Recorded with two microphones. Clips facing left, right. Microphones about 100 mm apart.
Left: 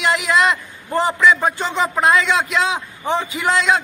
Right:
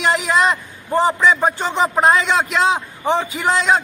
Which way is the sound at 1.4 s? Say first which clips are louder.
Right 2 dB; 20° right (ahead or behind).